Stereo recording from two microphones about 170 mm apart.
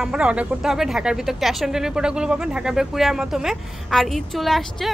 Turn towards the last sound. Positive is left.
turn(degrees=0)  # may be behind; listen again after turning